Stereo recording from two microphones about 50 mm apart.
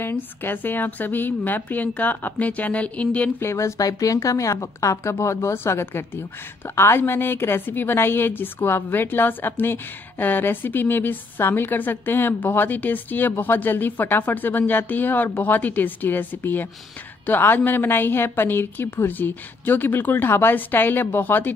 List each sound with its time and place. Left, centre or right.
0.1 s a woman's voice: left
3.3 s speech: left
7.0 s a woman's voice: left